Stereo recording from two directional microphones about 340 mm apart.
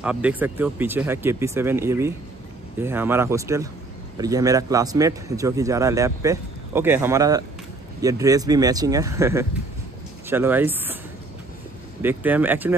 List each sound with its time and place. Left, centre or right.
0.0 s a man's voice: centre
12.0 s speech: centre